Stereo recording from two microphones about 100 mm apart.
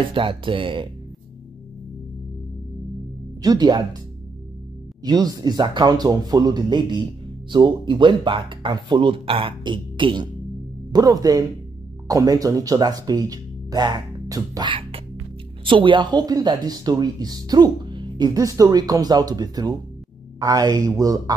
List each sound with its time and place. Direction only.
0.1 s speech: 60° right (ahead or behind)
3.4 s speech: 45° right (ahead or behind)
5.0 s speech: 40° right (ahead or behind)
10.9 s speech: 40° right (ahead or behind)
14.7 s speech: 65° right (ahead or behind); by 21.2 s 35° right (ahead or behind)